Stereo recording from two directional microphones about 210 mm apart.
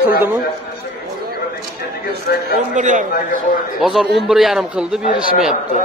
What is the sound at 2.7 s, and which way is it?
Speech, 35° right (ahead or behind).